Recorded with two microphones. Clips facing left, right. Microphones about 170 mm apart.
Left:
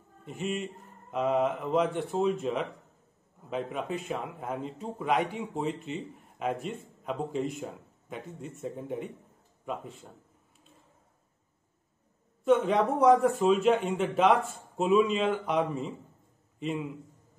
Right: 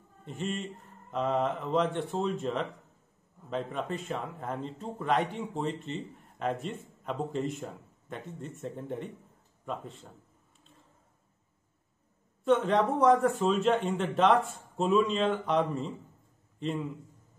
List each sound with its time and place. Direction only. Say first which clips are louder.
0.2 s speech: left 2 dB; 5° left (ahead or behind)
12.4 s a man's voice: left 1 dB; 5° left (ahead or behind)